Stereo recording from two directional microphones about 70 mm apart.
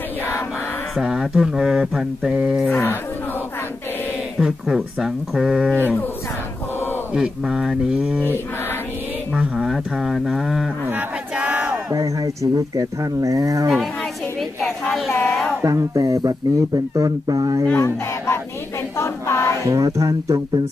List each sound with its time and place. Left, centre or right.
0.9 s mantra: centre
2.7 s speech: left
4.4 s speech: centre
7.2 s mantra: centre
9.4 s speech: centre
10.9 s crowd: right
11.9 s speech: right
14.6 s a sound: centre
15.6 s speech: right
17.7 s speech: left
18.9 s child singing: left
19.6 s speech: right